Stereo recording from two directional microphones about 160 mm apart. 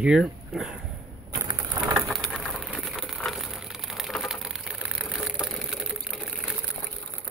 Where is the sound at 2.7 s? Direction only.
Centre (ahead or behind).